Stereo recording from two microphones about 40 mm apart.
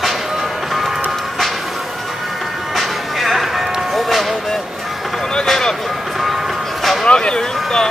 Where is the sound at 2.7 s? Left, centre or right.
Centre.